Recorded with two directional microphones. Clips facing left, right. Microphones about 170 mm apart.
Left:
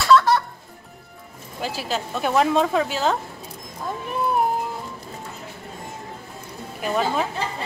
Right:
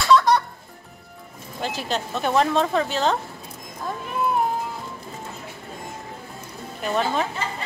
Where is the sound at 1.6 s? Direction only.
5° left (ahead or behind).